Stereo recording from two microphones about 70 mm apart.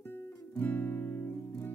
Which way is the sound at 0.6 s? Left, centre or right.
Left.